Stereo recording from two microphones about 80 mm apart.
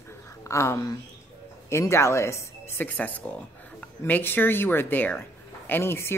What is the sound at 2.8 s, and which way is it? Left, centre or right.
Speech, left.